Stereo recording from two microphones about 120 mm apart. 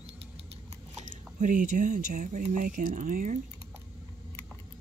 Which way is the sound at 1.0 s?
90° right.